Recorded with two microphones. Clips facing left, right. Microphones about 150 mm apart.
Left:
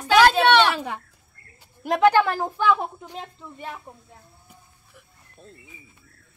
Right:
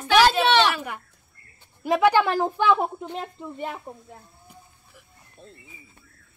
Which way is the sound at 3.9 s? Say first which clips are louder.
Right 5 dB; 25° right (ahead or behind).